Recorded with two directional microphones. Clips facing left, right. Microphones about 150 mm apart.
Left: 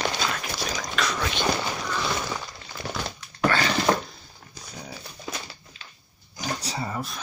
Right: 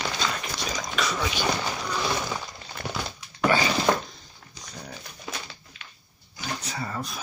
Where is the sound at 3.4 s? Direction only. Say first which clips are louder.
Right 1 dB; 15° right (ahead or behind).